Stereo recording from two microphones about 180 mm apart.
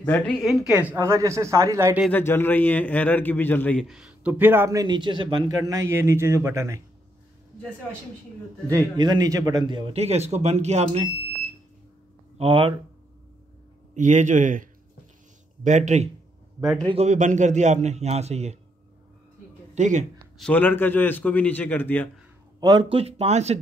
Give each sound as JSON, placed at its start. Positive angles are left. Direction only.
{"t": 0.0, "sound": "a man's voice", "side_deg": 10}
{"t": 0.7, "sound": "speech", "side_deg": -10}
{"t": 2.0, "sound": "a man's voice", "side_deg": 10}
{"t": 3.8, "sound": "speech", "side_deg": -5}
{"t": 8.6, "sound": "a man's voice", "side_deg": -20}
{"t": 12.4, "sound": "a man's voice", "side_deg": -30}
{"t": 13.9, "sound": "a man's voice", "side_deg": -45}
{"t": 19.7, "sound": "a woman's voice", "side_deg": -40}
{"t": 20.3, "sound": "a man's voice", "side_deg": 5}
{"t": 22.6, "sound": "a man's voice", "side_deg": -25}